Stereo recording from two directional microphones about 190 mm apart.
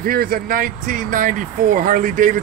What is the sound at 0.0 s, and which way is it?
Speech, 50° right (ahead or behind).